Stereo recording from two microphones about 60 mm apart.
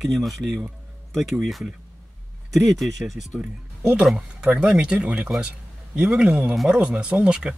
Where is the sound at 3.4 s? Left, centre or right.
Centre.